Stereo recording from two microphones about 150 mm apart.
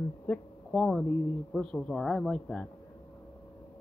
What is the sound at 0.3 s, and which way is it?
Speech, 5° left (ahead or behind).